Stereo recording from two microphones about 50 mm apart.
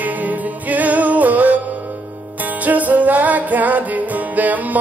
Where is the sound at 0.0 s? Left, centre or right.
Right.